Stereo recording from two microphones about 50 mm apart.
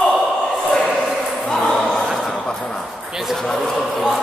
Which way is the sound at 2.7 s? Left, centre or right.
Centre.